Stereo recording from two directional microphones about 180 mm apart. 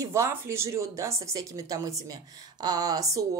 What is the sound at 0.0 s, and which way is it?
Speech, 15° right (ahead or behind).